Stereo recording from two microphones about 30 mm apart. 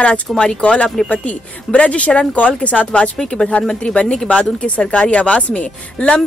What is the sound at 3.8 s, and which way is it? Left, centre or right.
A woman's voice, left.